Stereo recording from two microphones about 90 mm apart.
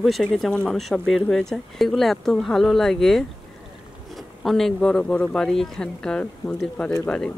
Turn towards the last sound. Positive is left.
turn(degrees=15)  # may be behind; listen again after turning